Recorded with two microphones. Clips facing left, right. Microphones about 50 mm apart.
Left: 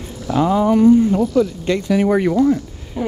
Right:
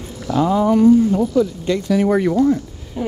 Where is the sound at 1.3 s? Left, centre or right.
Left.